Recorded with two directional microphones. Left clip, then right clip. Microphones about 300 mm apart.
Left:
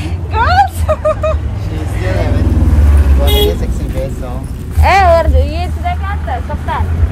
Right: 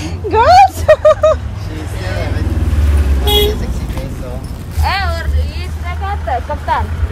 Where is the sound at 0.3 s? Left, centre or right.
Centre.